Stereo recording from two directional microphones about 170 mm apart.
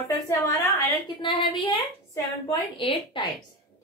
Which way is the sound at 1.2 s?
30° left (ahead or behind).